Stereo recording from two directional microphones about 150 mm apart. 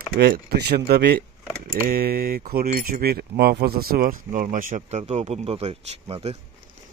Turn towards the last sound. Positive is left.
turn(degrees=-40)  # may be behind; listen again after turning